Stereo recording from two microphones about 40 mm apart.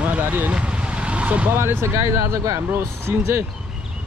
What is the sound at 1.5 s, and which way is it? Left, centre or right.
Speech, right.